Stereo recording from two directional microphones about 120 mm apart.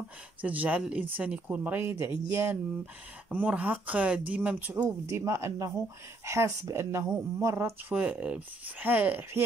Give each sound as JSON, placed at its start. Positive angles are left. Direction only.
{"t": 0.4, "sound": "speech", "side_deg": -10}
{"t": 4.8, "sound": "speech", "side_deg": -25}
{"t": 7.9, "sound": "speech", "side_deg": -10}